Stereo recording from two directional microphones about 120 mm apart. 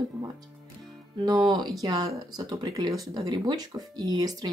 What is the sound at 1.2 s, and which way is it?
Speech, 35° right (ahead or behind).